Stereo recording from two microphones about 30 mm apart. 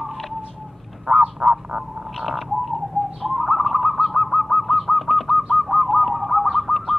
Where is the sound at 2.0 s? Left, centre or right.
Centre.